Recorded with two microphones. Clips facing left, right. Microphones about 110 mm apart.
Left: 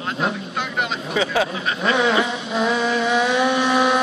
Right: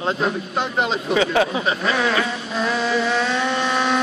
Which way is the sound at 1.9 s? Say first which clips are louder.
Left 5 dB; 20° left (ahead or behind).